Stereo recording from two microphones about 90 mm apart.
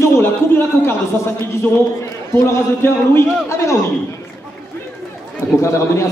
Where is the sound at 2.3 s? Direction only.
30° left (ahead or behind).